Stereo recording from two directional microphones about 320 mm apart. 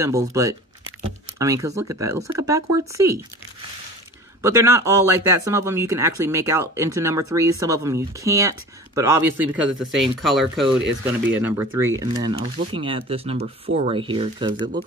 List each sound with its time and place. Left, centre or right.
0.0 s speech: centre
4.4 s speech: centre